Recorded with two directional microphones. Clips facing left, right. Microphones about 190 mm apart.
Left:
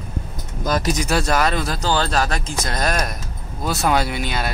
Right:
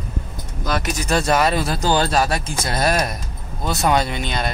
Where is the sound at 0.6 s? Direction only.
40° left (ahead or behind).